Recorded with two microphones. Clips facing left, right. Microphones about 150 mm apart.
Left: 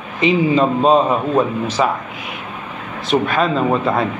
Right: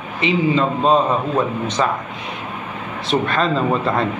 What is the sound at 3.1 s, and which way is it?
Speech, centre (ahead or behind).